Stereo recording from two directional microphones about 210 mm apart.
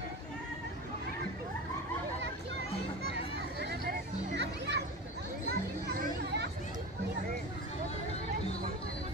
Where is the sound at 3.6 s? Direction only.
50° right (ahead or behind).